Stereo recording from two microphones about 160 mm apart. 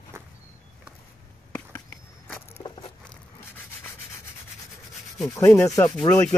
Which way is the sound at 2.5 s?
35° left (ahead or behind).